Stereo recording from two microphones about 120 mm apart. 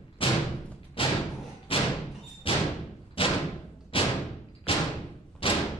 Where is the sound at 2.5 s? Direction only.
45° left (ahead or behind).